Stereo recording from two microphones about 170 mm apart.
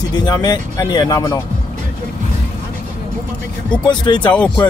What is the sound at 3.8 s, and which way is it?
Speech, 25° left (ahead or behind).